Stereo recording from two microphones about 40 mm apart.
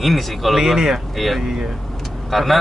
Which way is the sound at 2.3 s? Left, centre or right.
Centre.